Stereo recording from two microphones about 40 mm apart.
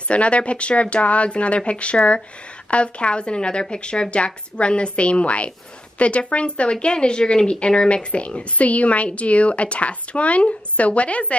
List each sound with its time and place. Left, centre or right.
0.1 s a woman's voice: left